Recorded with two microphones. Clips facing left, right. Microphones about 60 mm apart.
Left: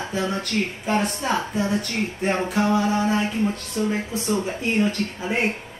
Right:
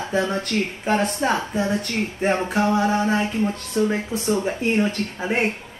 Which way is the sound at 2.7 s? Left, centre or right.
Right.